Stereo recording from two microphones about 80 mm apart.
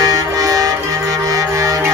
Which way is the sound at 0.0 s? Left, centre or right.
Right.